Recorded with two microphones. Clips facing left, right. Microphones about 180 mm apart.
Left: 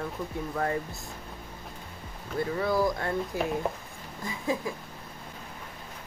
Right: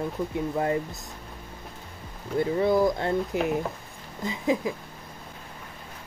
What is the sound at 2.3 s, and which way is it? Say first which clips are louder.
Speech: right 5 dB; 25° right (ahead or behind).